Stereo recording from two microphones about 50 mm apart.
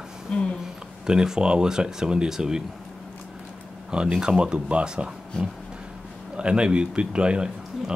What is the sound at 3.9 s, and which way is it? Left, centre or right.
Speech, centre.